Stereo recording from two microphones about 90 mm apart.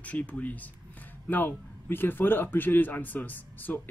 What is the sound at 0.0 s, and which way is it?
Speech, 15° left (ahead or behind).